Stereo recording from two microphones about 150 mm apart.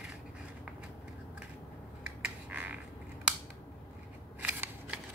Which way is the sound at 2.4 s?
10° right (ahead or behind).